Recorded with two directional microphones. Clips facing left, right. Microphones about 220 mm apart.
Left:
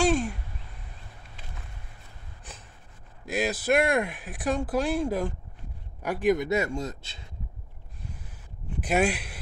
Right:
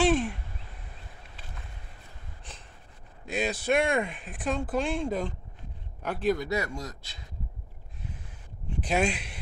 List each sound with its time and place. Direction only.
0.0 s a sound: centre (ahead or behind)
3.3 s a man's voice: 5° left (ahead or behind); by 7.2 s 25° left (ahead or behind)
8.8 s speech: 5° left (ahead or behind)